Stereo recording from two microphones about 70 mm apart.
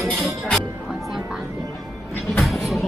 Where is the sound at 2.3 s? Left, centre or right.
Centre.